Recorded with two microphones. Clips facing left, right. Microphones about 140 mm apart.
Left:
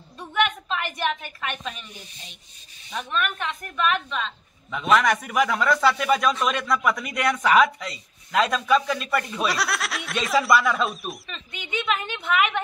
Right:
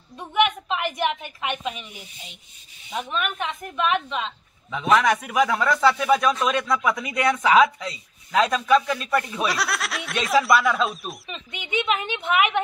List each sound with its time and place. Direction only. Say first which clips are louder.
0.2 s a woman's voice: right 3 dB; 15° right (ahead or behind)
4.6 s speech: right 1 dB; 5° right (ahead or behind)
11.2 s a woman's voice: right 2 dB; 15° right (ahead or behind)